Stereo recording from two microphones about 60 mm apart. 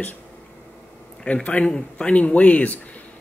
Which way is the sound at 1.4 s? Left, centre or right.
Left.